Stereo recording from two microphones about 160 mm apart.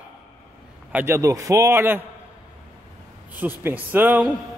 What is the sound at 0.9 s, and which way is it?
A man's voice, 15° right (ahead or behind).